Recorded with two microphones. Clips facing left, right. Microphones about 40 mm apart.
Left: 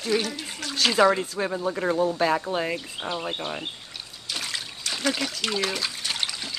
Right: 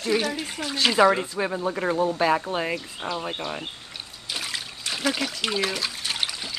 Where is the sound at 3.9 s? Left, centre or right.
Centre.